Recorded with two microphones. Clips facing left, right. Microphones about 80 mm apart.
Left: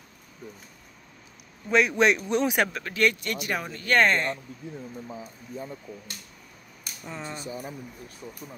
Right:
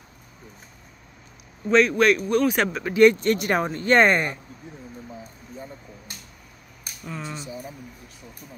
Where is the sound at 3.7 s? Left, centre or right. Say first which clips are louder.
Right 3 dB; right.